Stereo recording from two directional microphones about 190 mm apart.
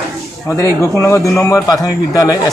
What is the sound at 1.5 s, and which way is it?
Speech, 20° left (ahead or behind).